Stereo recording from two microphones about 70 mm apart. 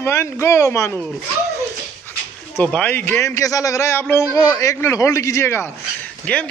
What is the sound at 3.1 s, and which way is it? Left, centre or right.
A man's voice, left.